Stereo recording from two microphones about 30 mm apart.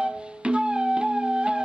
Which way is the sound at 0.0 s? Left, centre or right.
Right.